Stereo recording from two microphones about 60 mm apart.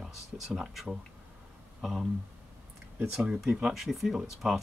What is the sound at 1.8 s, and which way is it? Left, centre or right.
Speech, centre.